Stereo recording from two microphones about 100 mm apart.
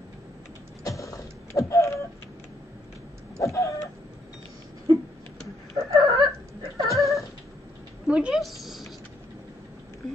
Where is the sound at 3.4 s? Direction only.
30° left (ahead or behind).